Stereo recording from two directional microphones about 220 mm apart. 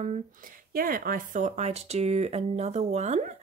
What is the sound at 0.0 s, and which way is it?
Speech, 35° right (ahead or behind).